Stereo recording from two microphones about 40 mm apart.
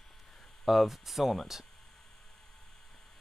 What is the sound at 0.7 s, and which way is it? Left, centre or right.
Speech, centre.